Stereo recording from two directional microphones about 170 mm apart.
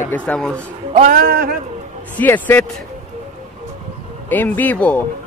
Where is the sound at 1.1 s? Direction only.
60° right (ahead or behind).